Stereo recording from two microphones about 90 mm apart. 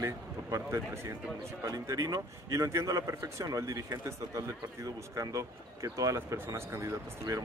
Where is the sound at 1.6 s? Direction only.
40° right (ahead or behind).